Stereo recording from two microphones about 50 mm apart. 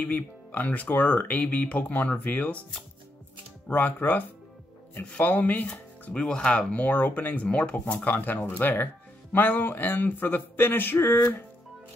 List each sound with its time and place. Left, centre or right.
0.0 s speech: left
3.6 s speech: left
5.2 s speech: left
6.1 s speech: centre
6.7 s speech: left
7.4 s speech: left